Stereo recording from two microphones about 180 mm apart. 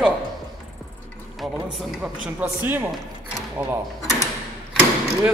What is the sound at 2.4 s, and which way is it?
Speech, 10° right (ahead or behind).